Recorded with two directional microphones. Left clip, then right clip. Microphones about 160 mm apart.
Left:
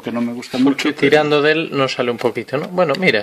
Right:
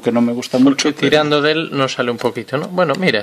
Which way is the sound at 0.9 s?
10° left (ahead or behind).